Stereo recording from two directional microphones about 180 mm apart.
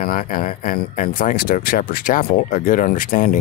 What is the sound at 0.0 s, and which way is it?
Speech, 50° left (ahead or behind).